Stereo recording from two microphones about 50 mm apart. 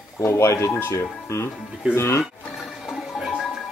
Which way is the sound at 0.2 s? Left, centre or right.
Left.